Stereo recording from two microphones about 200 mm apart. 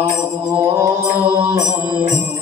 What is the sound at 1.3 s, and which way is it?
Mantra, 15° right (ahead or behind).